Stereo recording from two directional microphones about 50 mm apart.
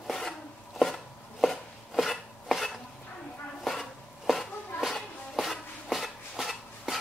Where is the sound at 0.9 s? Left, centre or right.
Centre.